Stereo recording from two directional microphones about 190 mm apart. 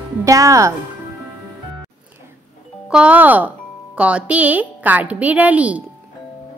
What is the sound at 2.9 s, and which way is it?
A woman's voice, 5° right (ahead or behind).